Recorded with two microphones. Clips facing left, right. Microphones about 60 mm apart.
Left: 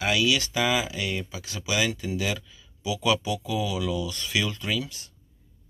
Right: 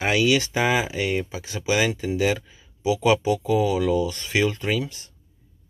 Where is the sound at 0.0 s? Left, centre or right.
Right.